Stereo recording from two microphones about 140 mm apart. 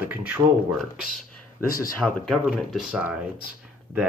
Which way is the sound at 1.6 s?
90° left.